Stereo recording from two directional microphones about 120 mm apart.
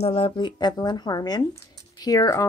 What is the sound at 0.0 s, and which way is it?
A woman's voice, 50° left (ahead or behind).